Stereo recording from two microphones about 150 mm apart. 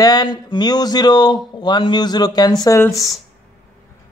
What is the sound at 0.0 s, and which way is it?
Speech, 25° left (ahead or behind).